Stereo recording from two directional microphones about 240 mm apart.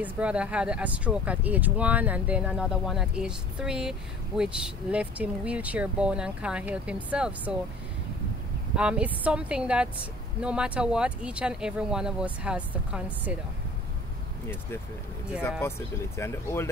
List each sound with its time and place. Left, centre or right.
0.0 s speech: centre
8.7 s speech: centre
16.2 s speech: centre